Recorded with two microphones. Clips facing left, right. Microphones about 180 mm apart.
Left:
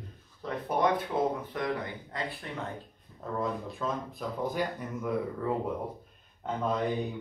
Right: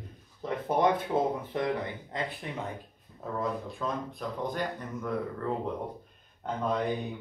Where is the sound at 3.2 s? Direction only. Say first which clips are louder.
Even; centre (ahead or behind).